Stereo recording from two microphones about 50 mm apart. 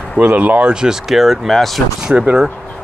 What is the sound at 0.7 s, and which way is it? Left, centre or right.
Speech, centre.